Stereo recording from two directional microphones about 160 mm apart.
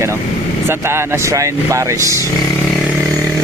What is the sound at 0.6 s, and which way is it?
Speech, 15° right (ahead or behind).